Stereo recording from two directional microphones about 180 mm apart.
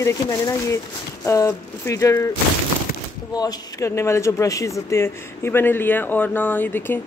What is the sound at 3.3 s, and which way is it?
Speech, 20° left (ahead or behind).